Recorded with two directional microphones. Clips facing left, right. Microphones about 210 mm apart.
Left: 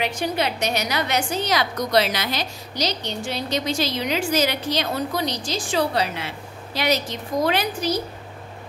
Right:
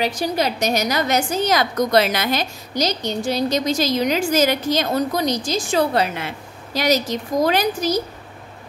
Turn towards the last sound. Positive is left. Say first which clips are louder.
# right 4 dB
turn(degrees=-40)  # may be behind; listen again after turning